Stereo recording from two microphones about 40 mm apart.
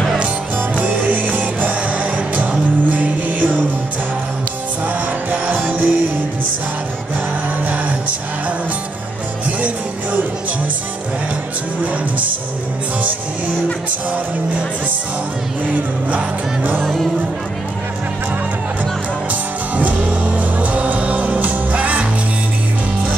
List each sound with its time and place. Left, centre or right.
0.6 s music: right
5.3 s music: right
16.8 s music: centre
19.8 s music: right